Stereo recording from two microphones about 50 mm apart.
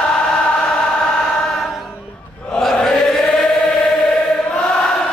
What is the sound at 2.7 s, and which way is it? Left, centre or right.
Chant, centre.